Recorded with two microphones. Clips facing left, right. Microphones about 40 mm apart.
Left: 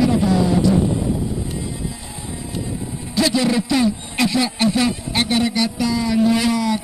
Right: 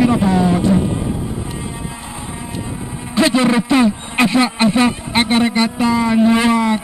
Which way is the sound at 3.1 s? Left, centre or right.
Right.